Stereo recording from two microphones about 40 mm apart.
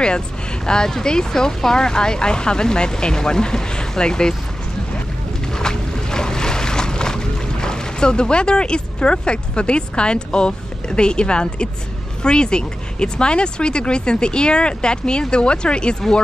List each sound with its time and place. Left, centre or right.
0.7 s speech: centre
5.5 s boat: centre
12.2 s speech: left